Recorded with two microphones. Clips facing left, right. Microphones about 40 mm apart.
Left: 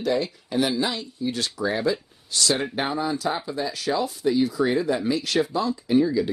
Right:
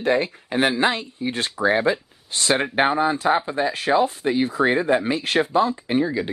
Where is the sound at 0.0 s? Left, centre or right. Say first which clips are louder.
Right 3 dB; right.